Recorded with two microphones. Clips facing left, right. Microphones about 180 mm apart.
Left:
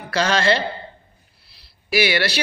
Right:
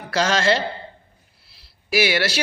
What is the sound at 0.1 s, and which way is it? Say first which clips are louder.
Speech: even; 60° left (ahead or behind).